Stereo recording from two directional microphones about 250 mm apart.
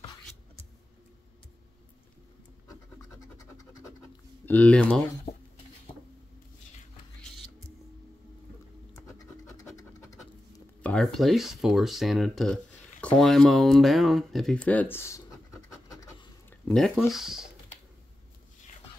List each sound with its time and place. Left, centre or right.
4.5 s speech: centre
7.2 s music: centre
9.0 s scratch: centre
10.5 s speech: centre